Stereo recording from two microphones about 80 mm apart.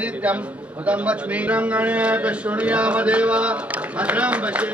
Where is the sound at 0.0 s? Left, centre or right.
Centre.